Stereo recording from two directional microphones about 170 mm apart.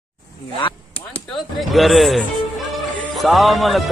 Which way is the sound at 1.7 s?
Centre (ahead or behind).